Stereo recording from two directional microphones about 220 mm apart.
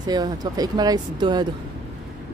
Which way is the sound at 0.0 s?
20° right (ahead or behind).